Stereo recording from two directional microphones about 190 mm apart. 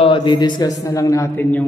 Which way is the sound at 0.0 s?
25° left (ahead or behind).